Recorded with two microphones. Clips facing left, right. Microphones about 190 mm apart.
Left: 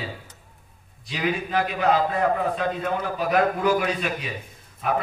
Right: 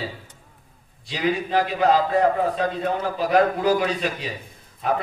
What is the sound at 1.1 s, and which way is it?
A man's voice, 35° right (ahead or behind).